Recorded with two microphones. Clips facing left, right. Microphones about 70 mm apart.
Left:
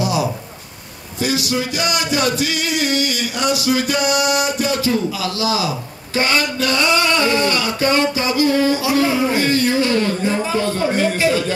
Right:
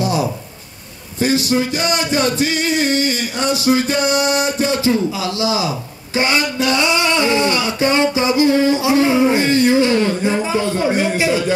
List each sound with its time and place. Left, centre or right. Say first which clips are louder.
1.2 s music: right 4 dB; right
6.1 s male singing: right 1 dB; right